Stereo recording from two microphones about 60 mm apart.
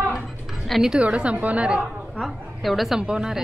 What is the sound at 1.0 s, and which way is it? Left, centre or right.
Speech, centre.